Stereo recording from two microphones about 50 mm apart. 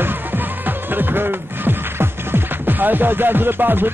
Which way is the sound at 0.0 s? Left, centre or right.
Right.